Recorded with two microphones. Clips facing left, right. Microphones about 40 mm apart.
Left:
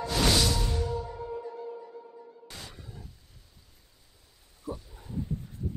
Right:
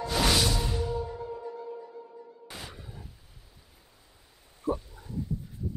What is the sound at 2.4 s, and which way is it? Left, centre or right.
Music, centre.